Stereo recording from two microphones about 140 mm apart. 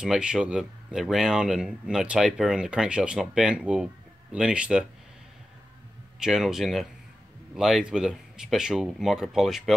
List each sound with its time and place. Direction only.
0.0 s speech: 5° right (ahead or behind)
6.1 s speech: 5° right (ahead or behind)